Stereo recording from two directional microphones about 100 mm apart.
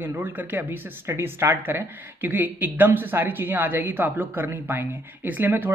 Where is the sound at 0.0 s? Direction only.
20° right (ahead or behind).